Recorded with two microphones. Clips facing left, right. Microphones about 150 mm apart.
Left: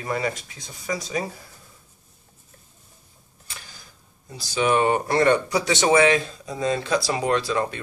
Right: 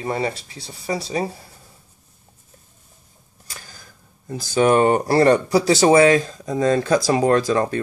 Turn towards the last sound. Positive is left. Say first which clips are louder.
# right 5 dB
turn(degrees=-45)  # may be behind; listen again after turning